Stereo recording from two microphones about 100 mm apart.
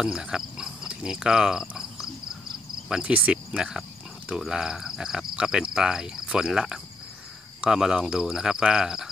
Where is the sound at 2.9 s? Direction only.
10° right (ahead or behind).